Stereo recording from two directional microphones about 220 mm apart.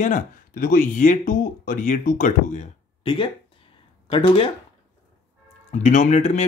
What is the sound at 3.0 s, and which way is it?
Speech, 25° left (ahead or behind).